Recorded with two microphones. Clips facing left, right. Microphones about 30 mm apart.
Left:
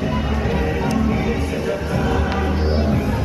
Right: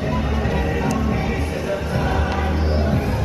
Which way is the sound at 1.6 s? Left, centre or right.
Right.